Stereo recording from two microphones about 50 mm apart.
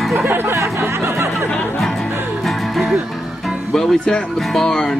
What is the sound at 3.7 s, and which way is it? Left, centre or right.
Speech, centre.